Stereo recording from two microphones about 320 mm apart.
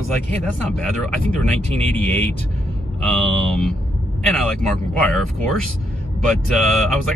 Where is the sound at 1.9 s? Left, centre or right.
Centre.